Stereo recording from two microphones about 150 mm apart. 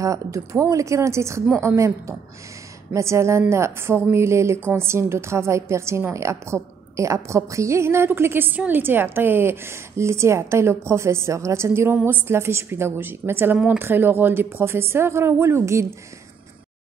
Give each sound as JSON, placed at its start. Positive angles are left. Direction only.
{"t": 0.0, "sound": "speech", "side_deg": -20}